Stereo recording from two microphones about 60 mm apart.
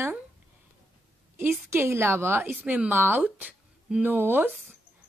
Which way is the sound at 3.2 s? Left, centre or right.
Right.